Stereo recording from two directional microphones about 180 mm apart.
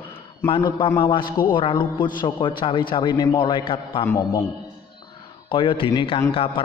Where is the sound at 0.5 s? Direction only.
25° left (ahead or behind).